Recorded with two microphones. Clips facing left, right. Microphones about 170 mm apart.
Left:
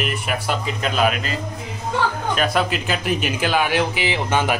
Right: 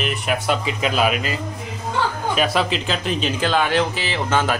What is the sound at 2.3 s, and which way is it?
A man's voice, centre (ahead or behind).